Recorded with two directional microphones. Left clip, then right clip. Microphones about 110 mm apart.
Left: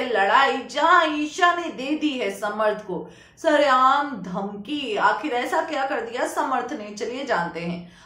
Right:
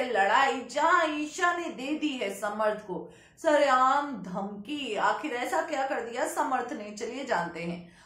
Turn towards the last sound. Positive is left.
turn(degrees=20)  # may be behind; listen again after turning